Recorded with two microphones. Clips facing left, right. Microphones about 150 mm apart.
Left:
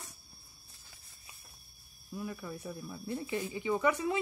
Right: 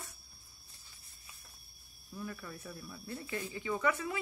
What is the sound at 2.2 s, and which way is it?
Speech, 15° left (ahead or behind).